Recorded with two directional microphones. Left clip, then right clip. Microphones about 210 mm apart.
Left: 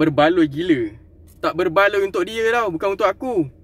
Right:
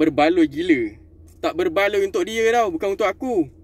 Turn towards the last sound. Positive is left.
turn(degrees=15)  # may be behind; listen again after turning